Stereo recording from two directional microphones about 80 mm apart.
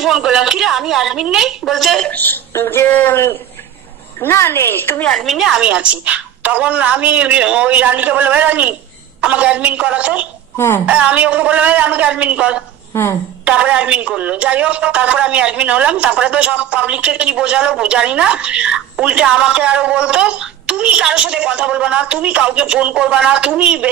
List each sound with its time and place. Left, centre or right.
0.0 s a woman's voice: centre
2.0 s speech: left
5.1 s a woman's voice: centre
12.9 s speech: left
13.5 s a woman's voice: centre